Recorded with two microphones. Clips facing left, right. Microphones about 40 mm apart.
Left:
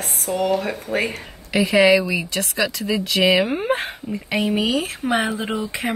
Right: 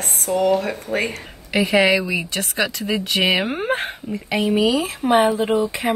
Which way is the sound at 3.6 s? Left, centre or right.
Centre.